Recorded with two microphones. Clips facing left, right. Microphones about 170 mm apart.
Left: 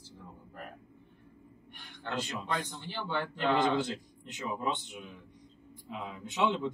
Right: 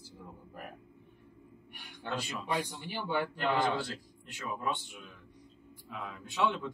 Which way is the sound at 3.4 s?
20° left (ahead or behind).